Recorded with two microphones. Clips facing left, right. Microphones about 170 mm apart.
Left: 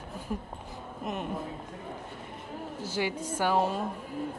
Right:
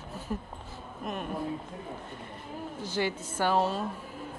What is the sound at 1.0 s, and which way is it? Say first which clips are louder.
Speech: left 1 dB; 20° left (ahead or behind).